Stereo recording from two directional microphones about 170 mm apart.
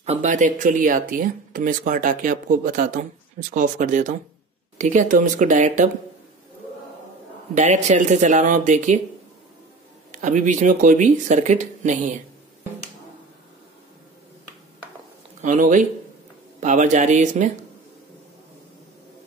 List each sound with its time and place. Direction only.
0.0 s speech: 40° right (ahead or behind)
7.5 s speech: 45° right (ahead or behind)
10.1 s speech: 45° right (ahead or behind)
15.4 s speech: 50° right (ahead or behind)